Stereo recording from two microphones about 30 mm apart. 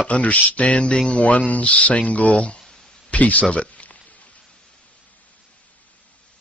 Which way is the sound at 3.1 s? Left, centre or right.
Left.